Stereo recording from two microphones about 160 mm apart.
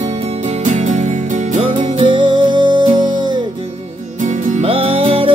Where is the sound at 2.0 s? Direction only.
30° right (ahead or behind).